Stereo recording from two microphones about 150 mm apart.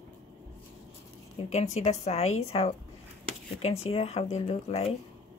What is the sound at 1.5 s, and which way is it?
Speech, 50° left (ahead or behind).